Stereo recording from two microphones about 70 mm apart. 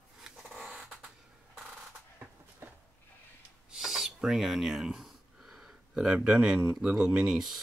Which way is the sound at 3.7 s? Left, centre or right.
Centre.